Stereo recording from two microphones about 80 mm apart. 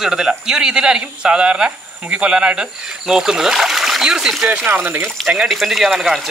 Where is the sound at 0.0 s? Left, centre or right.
Centre.